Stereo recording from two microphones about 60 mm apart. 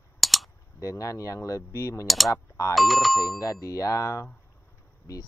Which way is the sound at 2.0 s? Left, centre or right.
Centre.